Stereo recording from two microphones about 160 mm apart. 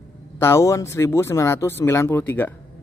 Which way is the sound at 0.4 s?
15° left (ahead or behind).